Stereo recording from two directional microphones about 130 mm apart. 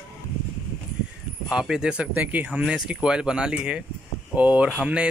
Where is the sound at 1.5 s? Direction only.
5° right (ahead or behind).